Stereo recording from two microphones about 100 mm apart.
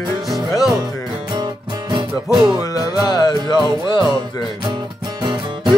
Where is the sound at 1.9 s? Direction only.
45° right (ahead or behind).